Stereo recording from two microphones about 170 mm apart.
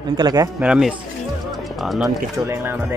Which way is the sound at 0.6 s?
5° right (ahead or behind).